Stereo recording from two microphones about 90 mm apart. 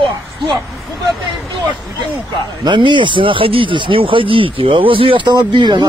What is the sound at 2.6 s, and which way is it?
Speech, 60° right (ahead or behind).